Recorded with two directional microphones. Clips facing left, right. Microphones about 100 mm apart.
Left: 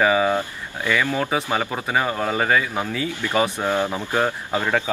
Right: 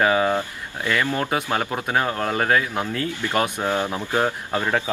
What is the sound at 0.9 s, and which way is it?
Speech, 10° right (ahead or behind).